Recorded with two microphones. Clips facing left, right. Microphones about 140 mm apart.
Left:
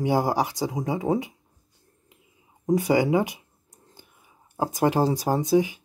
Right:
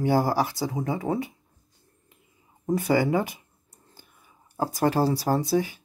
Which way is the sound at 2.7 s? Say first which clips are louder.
Left 2 dB; 15° left (ahead or behind).